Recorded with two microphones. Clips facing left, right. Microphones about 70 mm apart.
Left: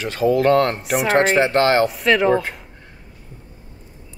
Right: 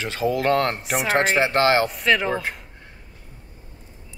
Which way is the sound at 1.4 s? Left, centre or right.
Centre.